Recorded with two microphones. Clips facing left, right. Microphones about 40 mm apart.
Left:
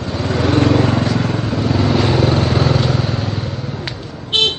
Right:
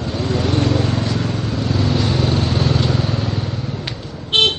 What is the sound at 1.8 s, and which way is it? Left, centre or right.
Vehicle, left.